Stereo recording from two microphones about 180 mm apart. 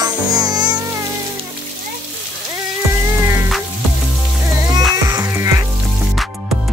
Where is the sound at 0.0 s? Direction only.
20° right (ahead or behind).